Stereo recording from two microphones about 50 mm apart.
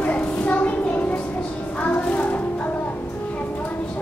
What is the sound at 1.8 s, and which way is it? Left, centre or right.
Child singing, left.